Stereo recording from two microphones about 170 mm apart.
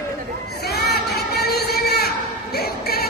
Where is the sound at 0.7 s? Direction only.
70° left (ahead or behind).